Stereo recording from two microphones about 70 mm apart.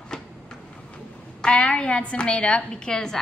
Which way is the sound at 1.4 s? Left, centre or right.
Centre.